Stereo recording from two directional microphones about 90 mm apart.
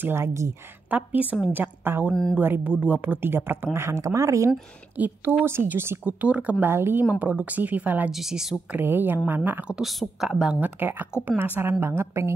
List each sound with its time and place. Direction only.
0.0 s speech: 30° right (ahead or behind)
0.8 s a woman's voice: 15° right (ahead or behind)
2.0 s speech: 5° left (ahead or behind)
2.3 s speech: 20° right (ahead or behind)
4.9 s speech: 20° right (ahead or behind)
6.0 s a woman's voice: 15° right (ahead or behind)
6.6 s a woman's voice: 25° right (ahead or behind)
8.1 s a woman's voice: 5° right (ahead or behind)
8.7 s speech: 25° right (ahead or behind)
9.8 s a woman's voice: 5° right (ahead or behind)
10.6 s speech: 20° right (ahead or behind)